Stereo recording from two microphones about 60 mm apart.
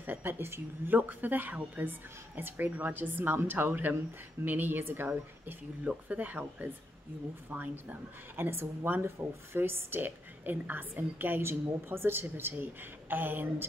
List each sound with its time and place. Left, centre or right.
0.0 s a woman's voice: right
5.9 s a woman's voice: right